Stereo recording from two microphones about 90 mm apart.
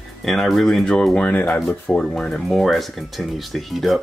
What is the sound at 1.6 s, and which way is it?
Speech, 5° left (ahead or behind).